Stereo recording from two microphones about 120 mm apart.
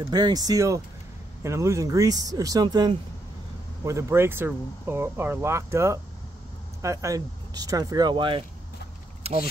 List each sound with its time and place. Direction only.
0.1 s speech: 35° right (ahead or behind)
3.8 s speech: 25° right (ahead or behind); by 8.5 s 45° right (ahead or behind)
9.2 s speech: 60° right (ahead or behind)